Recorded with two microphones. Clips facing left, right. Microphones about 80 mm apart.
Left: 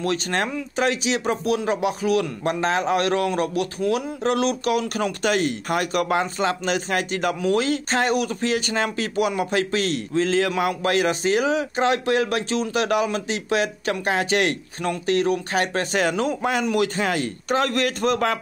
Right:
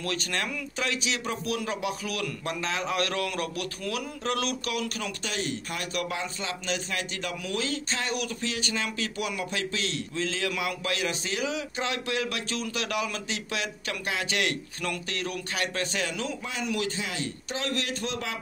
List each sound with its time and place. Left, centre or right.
0.0 s a man's voice: left